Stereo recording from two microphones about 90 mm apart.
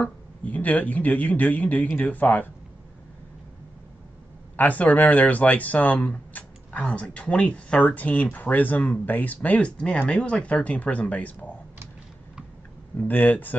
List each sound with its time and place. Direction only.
0.0 s speech: 15° left (ahead or behind)
4.6 s speech: 15° left (ahead or behind)
13.1 s speech: 20° left (ahead or behind)